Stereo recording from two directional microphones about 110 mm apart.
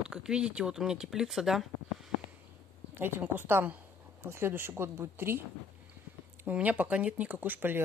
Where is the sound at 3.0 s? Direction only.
20° right (ahead or behind).